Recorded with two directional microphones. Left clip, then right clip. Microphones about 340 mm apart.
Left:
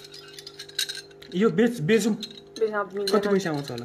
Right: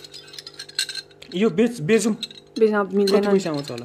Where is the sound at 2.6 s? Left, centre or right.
Right.